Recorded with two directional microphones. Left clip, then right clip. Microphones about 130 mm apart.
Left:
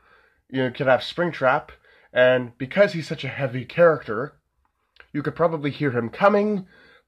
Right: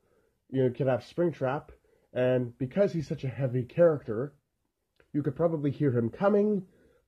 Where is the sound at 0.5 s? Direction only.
40° right (ahead or behind).